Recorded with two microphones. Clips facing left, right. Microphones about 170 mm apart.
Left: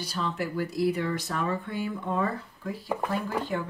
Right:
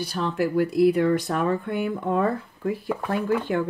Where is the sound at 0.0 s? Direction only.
60° right (ahead or behind).